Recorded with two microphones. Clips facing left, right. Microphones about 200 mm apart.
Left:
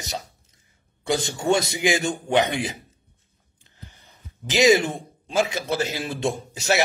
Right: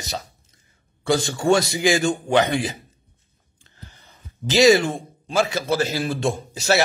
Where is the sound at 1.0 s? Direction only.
20° left (ahead or behind).